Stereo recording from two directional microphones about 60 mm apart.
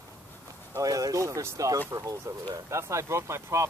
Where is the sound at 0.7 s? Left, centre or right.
Right.